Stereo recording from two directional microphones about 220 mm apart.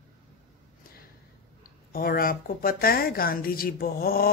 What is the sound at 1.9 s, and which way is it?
A woman's voice, 40° left (ahead or behind).